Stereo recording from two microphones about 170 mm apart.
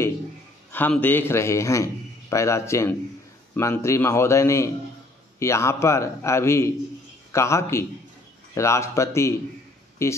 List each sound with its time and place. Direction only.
0.7 s a man's voice: 10° left (ahead or behind)